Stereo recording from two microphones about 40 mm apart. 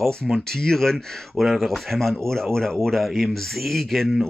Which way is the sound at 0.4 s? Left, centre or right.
Centre.